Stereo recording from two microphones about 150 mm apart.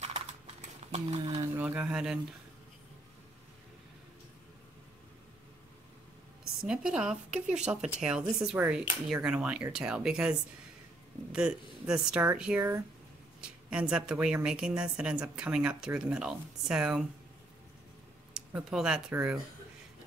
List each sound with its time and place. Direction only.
0.0 s typing: 45° right (ahead or behind)
1.6 s speech: 10° right (ahead or behind)
6.6 s a woman's voice: 5° right (ahead or behind)
11.3 s a woman's voice: 5° right (ahead or behind)
18.3 s speech: 5° right (ahead or behind)